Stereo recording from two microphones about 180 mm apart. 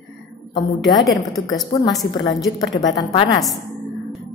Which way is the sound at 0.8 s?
20° left (ahead or behind).